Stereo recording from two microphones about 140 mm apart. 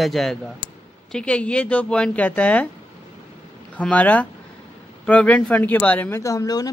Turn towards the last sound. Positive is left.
turn(degrees=25)  # may be behind; listen again after turning